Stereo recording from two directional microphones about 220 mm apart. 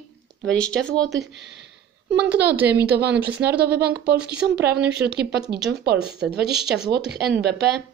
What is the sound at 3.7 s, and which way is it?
Speech, 45° right (ahead or behind).